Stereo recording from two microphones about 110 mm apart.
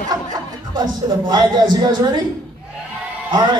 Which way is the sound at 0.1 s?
40° right (ahead or behind).